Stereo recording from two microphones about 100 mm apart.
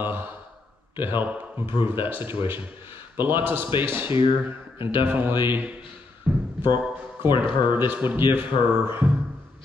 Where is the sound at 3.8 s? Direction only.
20° right (ahead or behind).